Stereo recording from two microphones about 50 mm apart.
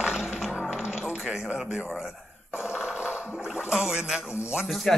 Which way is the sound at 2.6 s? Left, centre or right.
Centre.